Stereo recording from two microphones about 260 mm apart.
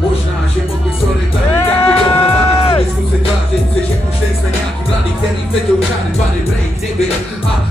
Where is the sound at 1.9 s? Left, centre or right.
Left.